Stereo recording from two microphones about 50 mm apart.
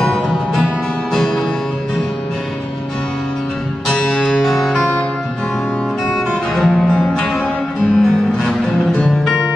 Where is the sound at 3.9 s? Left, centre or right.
Centre.